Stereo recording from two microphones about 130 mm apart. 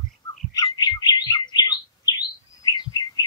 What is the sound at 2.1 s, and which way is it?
Bird, 35° left (ahead or behind).